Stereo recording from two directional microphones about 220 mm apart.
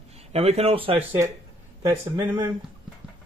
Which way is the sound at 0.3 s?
30° right (ahead or behind).